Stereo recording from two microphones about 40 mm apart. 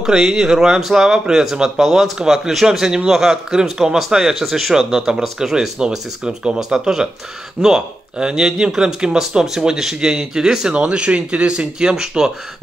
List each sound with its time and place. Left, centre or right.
0.0 s speech: centre